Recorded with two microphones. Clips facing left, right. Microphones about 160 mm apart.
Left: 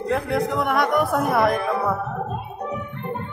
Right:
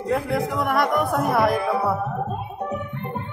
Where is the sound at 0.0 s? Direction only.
Centre (ahead or behind).